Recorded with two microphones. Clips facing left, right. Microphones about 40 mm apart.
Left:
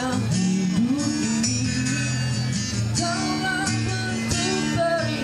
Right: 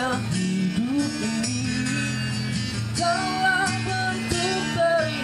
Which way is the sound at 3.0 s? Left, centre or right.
Centre.